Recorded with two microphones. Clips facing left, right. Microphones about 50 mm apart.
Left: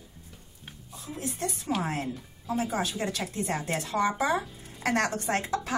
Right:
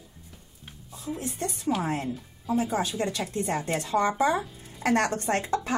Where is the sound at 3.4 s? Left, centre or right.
Right.